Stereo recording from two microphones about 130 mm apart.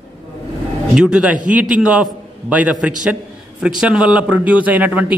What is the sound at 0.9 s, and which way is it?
A man's voice, 5° right (ahead or behind).